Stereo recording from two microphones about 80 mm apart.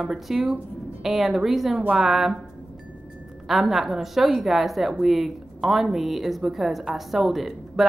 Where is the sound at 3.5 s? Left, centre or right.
Centre.